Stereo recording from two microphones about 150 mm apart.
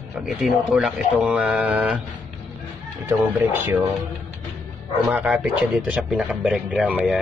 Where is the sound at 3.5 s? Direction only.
15° right (ahead or behind).